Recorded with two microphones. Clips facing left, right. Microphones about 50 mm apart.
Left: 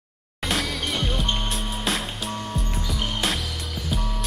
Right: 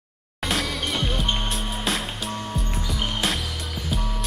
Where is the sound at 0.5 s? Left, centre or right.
Centre.